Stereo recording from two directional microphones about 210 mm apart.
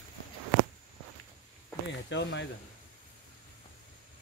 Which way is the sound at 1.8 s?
55° left (ahead or behind).